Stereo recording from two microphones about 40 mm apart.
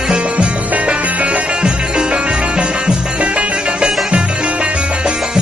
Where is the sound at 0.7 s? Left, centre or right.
Right.